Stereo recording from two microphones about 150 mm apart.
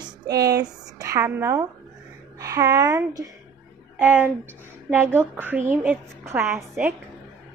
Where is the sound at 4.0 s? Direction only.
10° right (ahead or behind).